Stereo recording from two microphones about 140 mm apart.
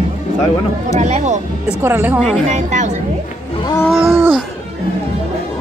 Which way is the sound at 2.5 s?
60° right (ahead or behind).